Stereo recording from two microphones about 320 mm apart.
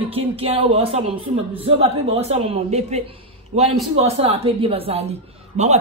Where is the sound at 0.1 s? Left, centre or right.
Centre.